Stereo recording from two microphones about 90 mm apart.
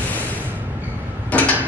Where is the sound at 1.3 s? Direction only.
20° left (ahead or behind).